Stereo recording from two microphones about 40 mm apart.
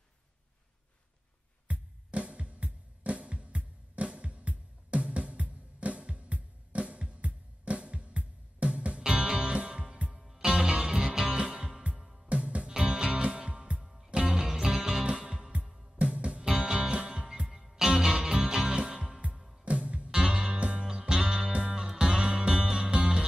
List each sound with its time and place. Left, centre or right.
1.7 s music: right
9.0 s music: centre
10.1 s music: centre
10.4 s music: centre
12.0 s music: centre
12.3 s music: right
12.6 s music: right
13.8 s music: centre
15.1 s music: right
16.4 s music: centre
17.5 s music: centre
18.8 s music: right
20.1 s music: right
21.7 s music: centre